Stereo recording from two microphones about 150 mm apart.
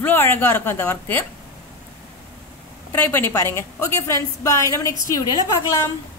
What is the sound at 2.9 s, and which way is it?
A woman's voice, 15° left (ahead or behind).